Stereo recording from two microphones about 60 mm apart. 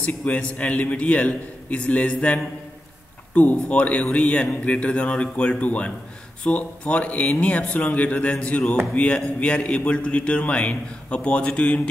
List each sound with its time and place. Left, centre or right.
0.0 s a man's voice: left